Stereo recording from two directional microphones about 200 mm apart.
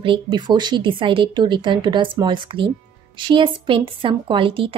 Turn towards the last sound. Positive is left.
turn(degrees=-25)  # may be behind; listen again after turning